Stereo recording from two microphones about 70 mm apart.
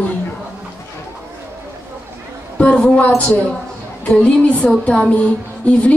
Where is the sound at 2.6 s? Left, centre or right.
Centre.